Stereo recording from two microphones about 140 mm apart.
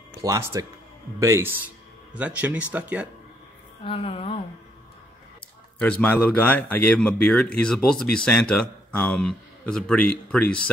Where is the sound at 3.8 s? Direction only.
40° left (ahead or behind).